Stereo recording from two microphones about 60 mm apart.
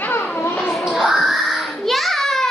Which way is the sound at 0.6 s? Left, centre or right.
Centre.